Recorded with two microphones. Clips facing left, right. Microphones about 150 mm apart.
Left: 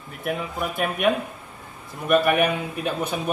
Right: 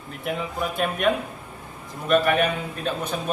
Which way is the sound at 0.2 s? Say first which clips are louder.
Even; 5° left (ahead or behind).